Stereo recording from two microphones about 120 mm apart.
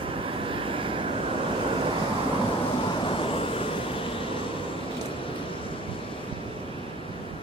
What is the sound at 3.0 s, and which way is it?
Vehicle, 50° left (ahead or behind).